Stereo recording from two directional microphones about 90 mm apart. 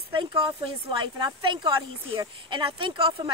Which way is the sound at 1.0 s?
60° right (ahead or behind).